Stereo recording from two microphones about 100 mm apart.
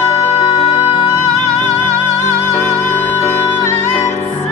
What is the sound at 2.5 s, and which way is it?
Music, 25° left (ahead or behind).